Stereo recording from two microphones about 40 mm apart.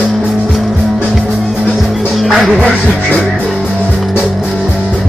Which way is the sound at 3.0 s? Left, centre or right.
Left.